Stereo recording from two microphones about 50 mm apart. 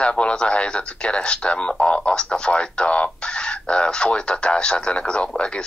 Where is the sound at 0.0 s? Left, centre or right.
Centre.